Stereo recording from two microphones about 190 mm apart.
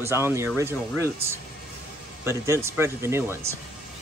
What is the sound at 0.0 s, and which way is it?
Speech, 15° right (ahead or behind).